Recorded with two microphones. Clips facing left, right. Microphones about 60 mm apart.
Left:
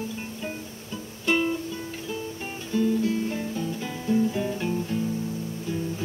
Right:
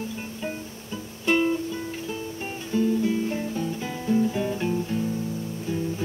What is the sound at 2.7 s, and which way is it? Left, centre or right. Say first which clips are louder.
Guitar: right 1 dB; centre.